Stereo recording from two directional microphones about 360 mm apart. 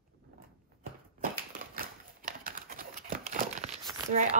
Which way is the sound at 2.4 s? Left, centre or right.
Right.